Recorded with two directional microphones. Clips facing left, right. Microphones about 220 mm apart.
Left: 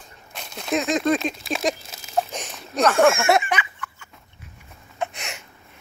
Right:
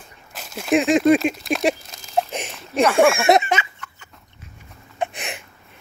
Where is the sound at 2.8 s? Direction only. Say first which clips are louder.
Right 2 dB; 15° right (ahead or behind).